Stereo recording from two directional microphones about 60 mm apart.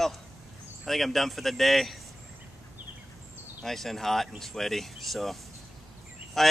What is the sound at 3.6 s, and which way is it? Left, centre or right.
Speech, centre.